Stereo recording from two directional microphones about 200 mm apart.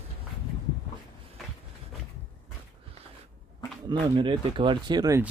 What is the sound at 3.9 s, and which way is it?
Speech, 25° right (ahead or behind).